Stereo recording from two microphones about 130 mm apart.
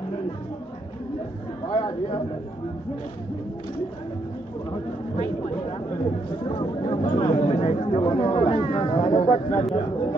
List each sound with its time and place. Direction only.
6.4 s speech: 40° left (ahead or behind)
8.3 s speech: 55° left (ahead or behind)
8.8 s speech: 45° left (ahead or behind)